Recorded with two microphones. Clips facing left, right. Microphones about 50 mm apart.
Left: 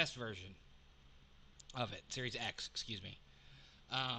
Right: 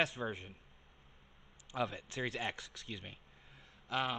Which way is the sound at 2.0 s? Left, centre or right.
Right.